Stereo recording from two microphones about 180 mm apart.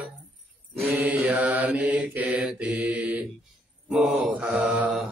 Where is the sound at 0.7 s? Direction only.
10° right (ahead or behind).